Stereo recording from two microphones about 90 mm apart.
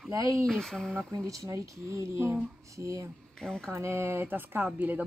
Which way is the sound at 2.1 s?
25° right (ahead or behind).